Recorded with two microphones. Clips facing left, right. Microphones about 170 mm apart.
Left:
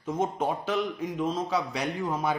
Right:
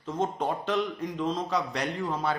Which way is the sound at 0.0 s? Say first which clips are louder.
Left 1 dB; 10° left (ahead or behind).